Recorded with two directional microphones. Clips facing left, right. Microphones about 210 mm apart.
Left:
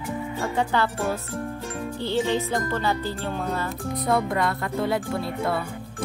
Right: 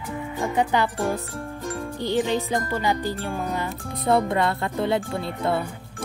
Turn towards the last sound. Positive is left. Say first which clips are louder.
# right 1 dB
turn(degrees=-25)  # may be behind; listen again after turning